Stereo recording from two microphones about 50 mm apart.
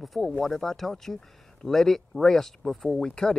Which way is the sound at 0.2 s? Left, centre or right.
Centre.